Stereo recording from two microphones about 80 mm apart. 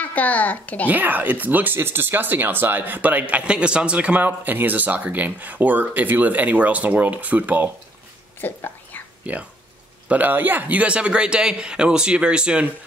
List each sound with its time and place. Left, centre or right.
0.0 s a child's voice: left
0.8 s speech: right
8.4 s whispering: left
9.2 s speech: centre